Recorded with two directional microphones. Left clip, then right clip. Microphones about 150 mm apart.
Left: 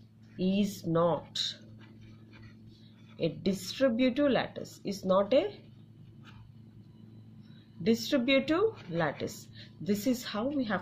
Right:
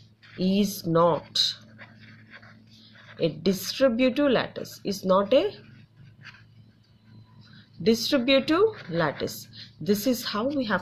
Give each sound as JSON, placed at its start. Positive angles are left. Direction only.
{"t": 0.4, "sound": "speech", "side_deg": -35}
{"t": 3.2, "sound": "speech", "side_deg": -30}
{"t": 7.8, "sound": "speech", "side_deg": -35}